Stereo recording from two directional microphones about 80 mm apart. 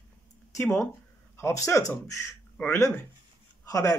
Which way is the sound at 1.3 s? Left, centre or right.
Left.